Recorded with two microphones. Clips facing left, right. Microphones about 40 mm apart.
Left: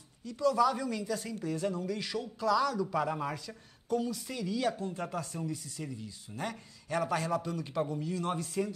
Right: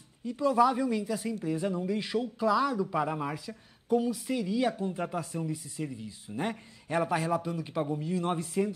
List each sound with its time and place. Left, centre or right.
0.2 s speech: right